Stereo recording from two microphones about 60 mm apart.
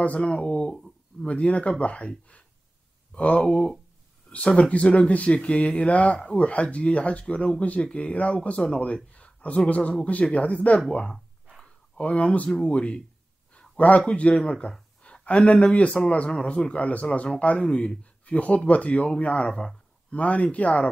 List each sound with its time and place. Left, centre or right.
0.2 s speech: centre
15.0 s a sound: centre
15.7 s speech: left
19.5 s speech: centre
20.1 s speech: left